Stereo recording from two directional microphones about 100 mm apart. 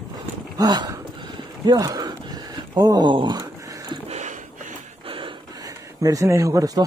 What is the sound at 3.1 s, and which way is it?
Speech, 50° right (ahead or behind).